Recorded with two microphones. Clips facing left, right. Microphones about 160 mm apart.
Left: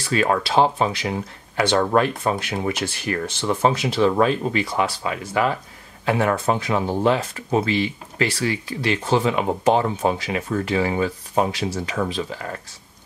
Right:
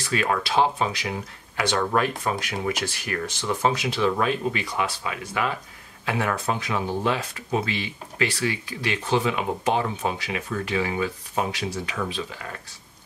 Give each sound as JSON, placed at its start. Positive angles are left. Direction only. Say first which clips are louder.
{"t": 0.1, "sound": "speech", "louder": "left 4 dB", "side_deg": 35}